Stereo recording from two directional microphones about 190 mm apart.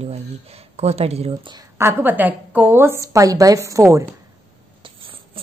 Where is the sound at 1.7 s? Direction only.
10° right (ahead or behind).